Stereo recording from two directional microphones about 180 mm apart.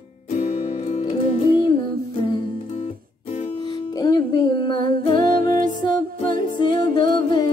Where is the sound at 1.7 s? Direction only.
55° right (ahead or behind).